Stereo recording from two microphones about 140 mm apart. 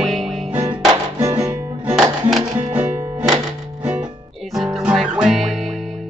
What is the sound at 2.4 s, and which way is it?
Music, 40° right (ahead or behind).